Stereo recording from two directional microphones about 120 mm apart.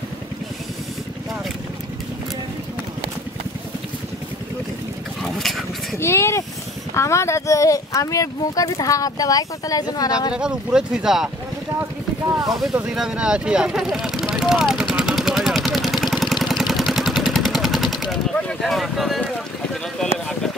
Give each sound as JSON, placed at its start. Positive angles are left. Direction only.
{"t": 5.2, "sound": "a sound", "side_deg": 0}
{"t": 5.9, "sound": "a sound", "side_deg": 20}
{"t": 7.0, "sound": "speech", "side_deg": 25}
{"t": 10.3, "sound": "speech", "side_deg": -5}
{"t": 12.4, "sound": "speech", "side_deg": 0}
{"t": 12.8, "sound": "vehicle", "side_deg": -5}
{"t": 20.0, "sound": "speech", "side_deg": 5}